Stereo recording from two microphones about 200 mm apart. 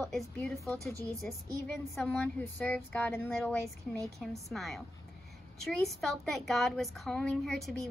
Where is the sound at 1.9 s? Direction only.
5° left (ahead or behind).